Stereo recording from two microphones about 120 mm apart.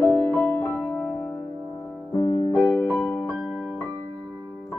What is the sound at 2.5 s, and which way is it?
Music, 20° left (ahead or behind).